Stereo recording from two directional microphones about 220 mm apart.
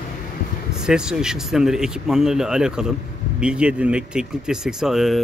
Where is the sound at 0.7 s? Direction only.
5° right (ahead or behind).